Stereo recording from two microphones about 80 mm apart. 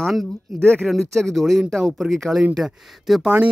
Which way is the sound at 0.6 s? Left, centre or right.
Centre.